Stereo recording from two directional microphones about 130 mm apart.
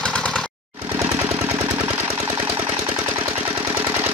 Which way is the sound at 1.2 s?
25° right (ahead or behind).